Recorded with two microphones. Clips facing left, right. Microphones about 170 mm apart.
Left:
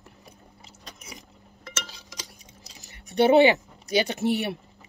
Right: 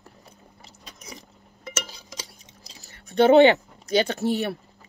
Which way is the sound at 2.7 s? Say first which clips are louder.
Right 2 dB; 15° left (ahead or behind).